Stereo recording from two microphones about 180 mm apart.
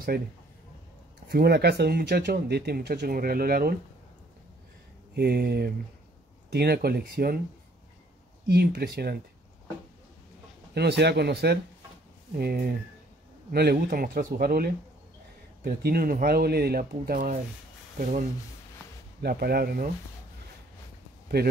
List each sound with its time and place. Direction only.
0.1 s speech: 60° right (ahead or behind)
1.3 s speech: 60° right (ahead or behind)
5.1 s speech: 65° right (ahead or behind)
8.5 s speech: 60° right (ahead or behind)
10.7 s speech: 65° right (ahead or behind); by 18.2 s 45° right (ahead or behind)
19.2 s speech: 60° right (ahead or behind)
21.4 s speech: 65° right (ahead or behind)